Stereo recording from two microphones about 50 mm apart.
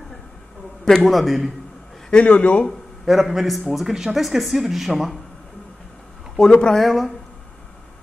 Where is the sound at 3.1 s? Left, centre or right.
Centre.